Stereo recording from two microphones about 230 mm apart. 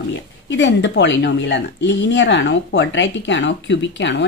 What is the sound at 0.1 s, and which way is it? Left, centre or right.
A woman's voice, left.